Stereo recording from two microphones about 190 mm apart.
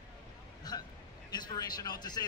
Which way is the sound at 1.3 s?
20° left (ahead or behind).